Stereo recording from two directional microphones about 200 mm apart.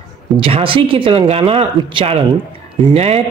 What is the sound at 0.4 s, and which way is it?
Speech, 25° right (ahead or behind).